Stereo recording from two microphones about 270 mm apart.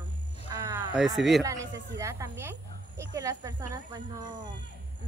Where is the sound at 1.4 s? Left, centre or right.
Centre.